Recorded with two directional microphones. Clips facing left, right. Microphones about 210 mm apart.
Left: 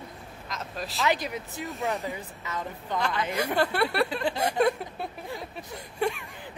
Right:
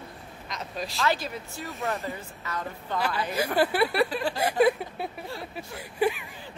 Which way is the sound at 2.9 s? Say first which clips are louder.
Even; 5° right (ahead or behind).